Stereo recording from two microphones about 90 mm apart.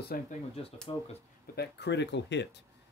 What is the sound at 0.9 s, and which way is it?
Speech, 60° left (ahead or behind).